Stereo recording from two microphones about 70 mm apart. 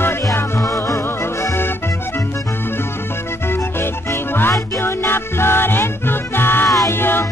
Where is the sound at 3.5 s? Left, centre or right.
Left.